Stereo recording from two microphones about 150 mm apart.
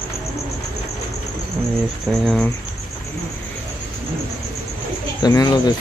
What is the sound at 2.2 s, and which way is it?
Speech, 5° left (ahead or behind).